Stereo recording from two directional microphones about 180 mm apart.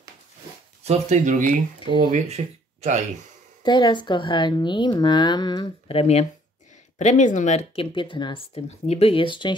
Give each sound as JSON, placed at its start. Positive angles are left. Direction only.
{"t": 0.8, "sound": "speech", "side_deg": -40}
{"t": 3.6, "sound": "speech", "side_deg": 25}